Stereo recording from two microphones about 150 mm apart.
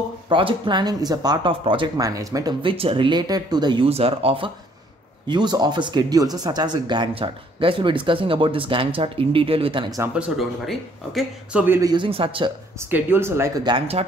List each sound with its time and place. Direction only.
0.3 s speech: 35° right (ahead or behind)
2.0 s speech: 20° right (ahead or behind)
2.6 s speech: 35° right (ahead or behind)
10.1 s speech: 5° right (ahead or behind)
11.6 s speech: 15° right (ahead or behind)
11.9 s speech: 35° right (ahead or behind)
12.9 s speech: 15° right (ahead or behind)
13.7 s speech: 35° right (ahead or behind)